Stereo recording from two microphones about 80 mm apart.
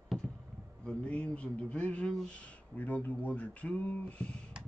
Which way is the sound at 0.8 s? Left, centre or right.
Centre.